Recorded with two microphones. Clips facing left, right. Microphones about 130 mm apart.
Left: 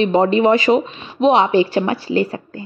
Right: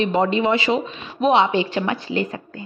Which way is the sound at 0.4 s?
45° left (ahead or behind).